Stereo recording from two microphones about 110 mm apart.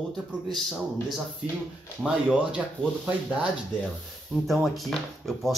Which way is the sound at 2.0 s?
10° right (ahead or behind).